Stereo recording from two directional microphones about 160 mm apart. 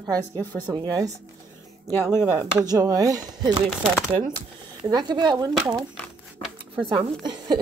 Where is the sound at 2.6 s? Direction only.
20° right (ahead or behind).